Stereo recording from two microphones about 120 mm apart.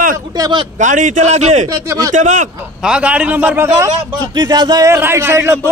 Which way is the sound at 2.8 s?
10° right (ahead or behind).